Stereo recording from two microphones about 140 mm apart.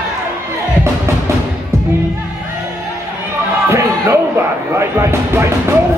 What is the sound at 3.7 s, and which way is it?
Music, 20° right (ahead or behind).